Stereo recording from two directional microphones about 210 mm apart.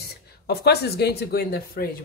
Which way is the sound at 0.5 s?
50° left (ahead or behind).